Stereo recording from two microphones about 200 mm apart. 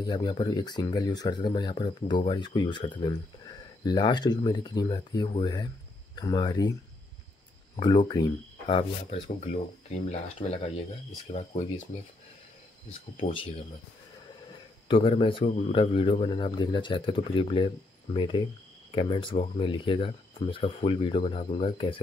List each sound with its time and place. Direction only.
0.0 s speech: 20° left (ahead or behind)
7.7 s speech: 25° left (ahead or behind)
14.9 s speech: 25° left (ahead or behind)